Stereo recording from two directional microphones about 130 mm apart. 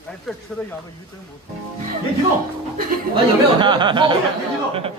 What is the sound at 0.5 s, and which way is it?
Speech, 5° left (ahead or behind).